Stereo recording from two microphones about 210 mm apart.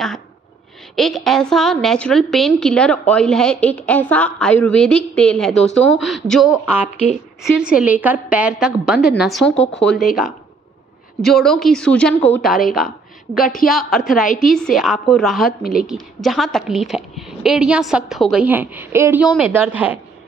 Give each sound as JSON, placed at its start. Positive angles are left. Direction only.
{"t": 0.9, "sound": "a woman's voice", "side_deg": 0}
{"t": 13.4, "sound": "a woman's voice", "side_deg": 40}
{"t": 13.7, "sound": "a woman's voice", "side_deg": 0}